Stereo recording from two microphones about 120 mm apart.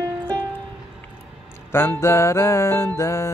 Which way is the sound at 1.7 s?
20° left (ahead or behind).